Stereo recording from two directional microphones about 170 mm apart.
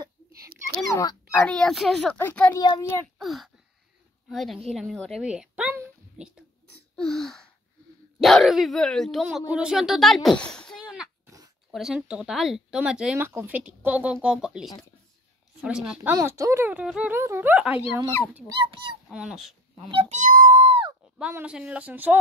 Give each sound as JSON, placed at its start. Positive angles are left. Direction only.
{"t": 1.3, "sound": "a woman's voice", "side_deg": 10}
{"t": 3.2, "sound": "a woman's voice", "side_deg": 0}
{"t": 18.5, "sound": "speech", "side_deg": -25}
{"t": 19.0, "sound": "speech", "side_deg": -5}
{"t": 19.9, "sound": "speech", "side_deg": -35}
{"t": 20.2, "sound": "music", "side_deg": -50}
{"t": 21.2, "sound": "speech", "side_deg": -10}